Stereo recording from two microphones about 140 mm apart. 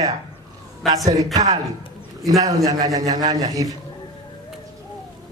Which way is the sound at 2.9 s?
25° right (ahead or behind).